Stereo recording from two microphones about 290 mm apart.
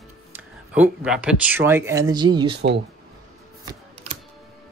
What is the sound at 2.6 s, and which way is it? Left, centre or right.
Speech, right.